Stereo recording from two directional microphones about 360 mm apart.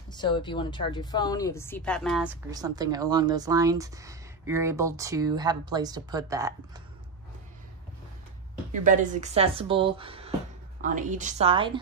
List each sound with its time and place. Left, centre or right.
0.1 s a woman's voice: centre
8.7 s a woman's voice: right